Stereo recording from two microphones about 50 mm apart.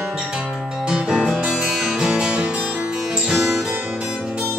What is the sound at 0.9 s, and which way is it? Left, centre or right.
Music, centre.